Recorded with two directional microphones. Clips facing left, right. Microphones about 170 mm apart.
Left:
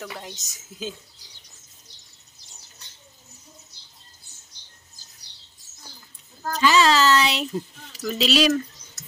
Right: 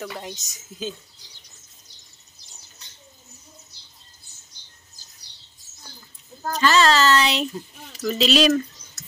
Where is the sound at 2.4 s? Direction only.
50° left (ahead or behind).